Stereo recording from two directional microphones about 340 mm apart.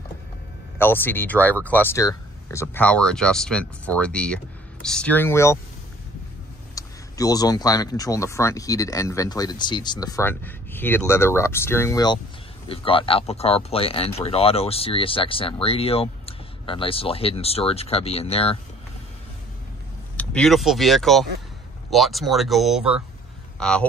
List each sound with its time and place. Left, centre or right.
0.7 s speech: centre
6.7 s speech: centre
20.2 s speech: centre